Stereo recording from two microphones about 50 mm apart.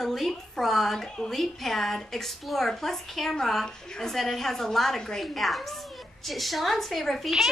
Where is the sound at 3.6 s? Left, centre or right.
Centre.